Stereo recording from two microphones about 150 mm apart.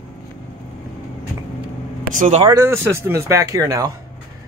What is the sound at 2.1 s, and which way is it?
Speech, 60° right (ahead or behind).